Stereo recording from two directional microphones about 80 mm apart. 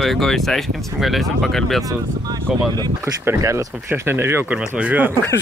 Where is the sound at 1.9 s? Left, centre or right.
Right.